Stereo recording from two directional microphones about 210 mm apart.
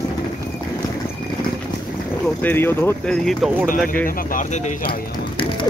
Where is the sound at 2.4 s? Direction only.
10° left (ahead or behind).